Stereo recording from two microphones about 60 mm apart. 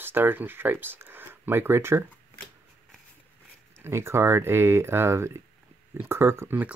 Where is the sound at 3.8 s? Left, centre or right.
Right.